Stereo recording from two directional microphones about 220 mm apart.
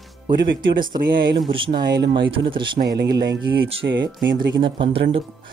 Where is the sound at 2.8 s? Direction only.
50° right (ahead or behind).